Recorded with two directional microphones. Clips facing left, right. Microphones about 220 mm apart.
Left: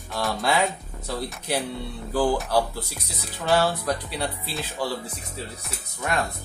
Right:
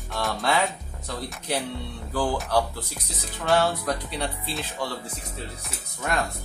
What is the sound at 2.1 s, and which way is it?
Speech, 5° left (ahead or behind).